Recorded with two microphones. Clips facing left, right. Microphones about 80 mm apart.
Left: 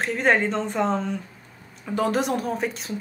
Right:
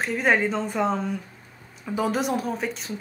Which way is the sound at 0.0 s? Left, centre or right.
Centre.